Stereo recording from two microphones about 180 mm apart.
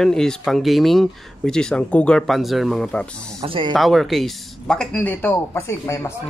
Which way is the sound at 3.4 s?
30° right (ahead or behind).